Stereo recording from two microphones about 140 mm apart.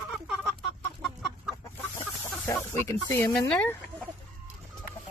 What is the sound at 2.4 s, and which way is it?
Speech, 20° left (ahead or behind).